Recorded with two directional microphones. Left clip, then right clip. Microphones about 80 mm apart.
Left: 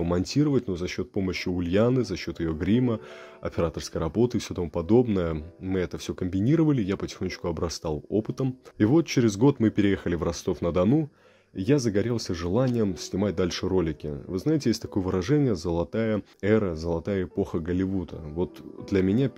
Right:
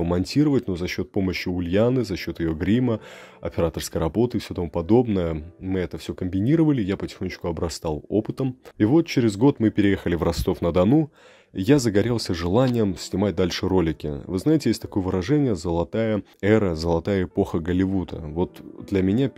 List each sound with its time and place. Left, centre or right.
0.0 s speech: right
0.5 s speech: right
1.3 s speech: right
2.0 s speech: right
3.7 s speech: right
4.2 s speech: centre
8.7 s speech: centre
10.1 s speech: right
11.5 s speech: right
14.7 s speech: right
16.3 s speech: right
16.7 s speech: right
19.0 s speech: right